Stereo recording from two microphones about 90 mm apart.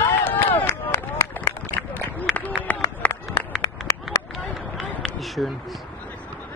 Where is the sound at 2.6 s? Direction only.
20° left (ahead or behind).